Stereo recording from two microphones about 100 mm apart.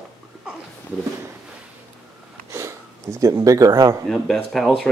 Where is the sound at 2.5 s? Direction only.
30° right (ahead or behind).